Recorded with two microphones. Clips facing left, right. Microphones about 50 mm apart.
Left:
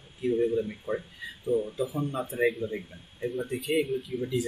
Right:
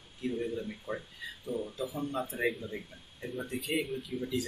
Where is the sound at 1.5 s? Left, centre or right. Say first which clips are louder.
Left 9 dB; left.